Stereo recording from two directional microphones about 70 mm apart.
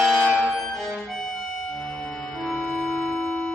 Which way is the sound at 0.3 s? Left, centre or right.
Right.